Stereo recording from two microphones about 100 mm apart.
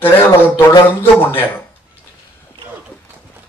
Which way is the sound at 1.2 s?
20° left (ahead or behind).